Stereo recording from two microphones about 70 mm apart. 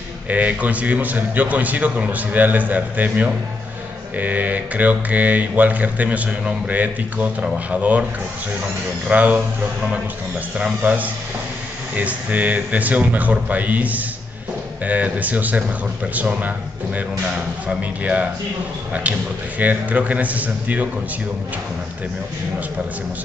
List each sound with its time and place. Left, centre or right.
0.3 s a man's voice: right
9.0 s a man's voice: right
10.6 s a man's voice: right
19.6 s a man's voice: right